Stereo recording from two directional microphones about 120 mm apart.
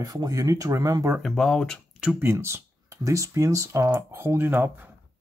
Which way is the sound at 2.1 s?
20° right (ahead or behind).